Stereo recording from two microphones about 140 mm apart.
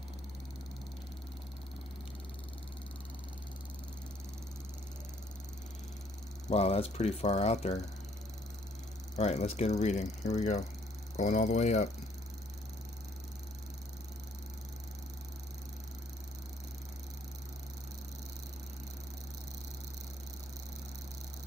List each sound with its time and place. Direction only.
6.5 s speech: 50° left (ahead or behind)
9.1 s speech: 50° left (ahead or behind)